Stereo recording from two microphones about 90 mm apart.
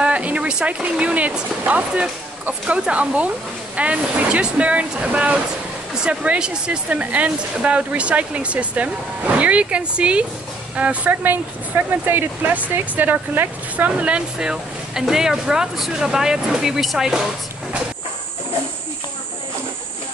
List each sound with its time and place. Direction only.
0.0 s speech: 15° right (ahead or behind)